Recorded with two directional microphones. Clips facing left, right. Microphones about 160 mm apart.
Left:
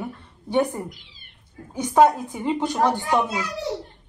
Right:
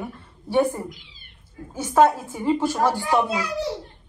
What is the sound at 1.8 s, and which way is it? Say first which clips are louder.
A woman's voice: left 1 dB; 15° left (ahead or behind).